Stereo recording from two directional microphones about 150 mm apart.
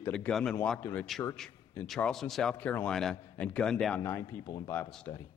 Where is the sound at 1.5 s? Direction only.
15° left (ahead or behind).